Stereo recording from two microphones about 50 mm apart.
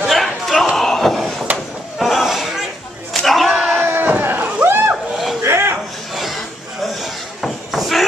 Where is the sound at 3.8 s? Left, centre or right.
Right.